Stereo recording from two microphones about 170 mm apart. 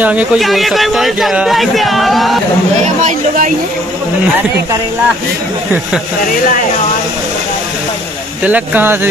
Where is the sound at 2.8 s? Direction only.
50° right (ahead or behind).